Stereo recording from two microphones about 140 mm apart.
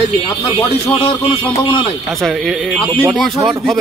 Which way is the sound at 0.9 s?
45° left (ahead or behind).